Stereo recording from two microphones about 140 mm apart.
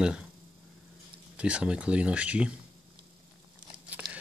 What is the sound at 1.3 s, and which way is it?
Speech, 10° right (ahead or behind).